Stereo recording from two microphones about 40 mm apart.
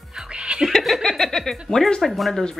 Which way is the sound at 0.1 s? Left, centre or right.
Right.